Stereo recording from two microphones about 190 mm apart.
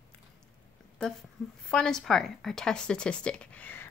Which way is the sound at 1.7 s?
5° left (ahead or behind).